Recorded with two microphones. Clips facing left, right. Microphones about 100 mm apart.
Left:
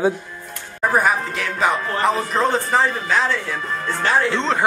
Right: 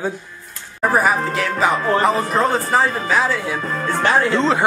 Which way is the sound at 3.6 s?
50° right (ahead or behind).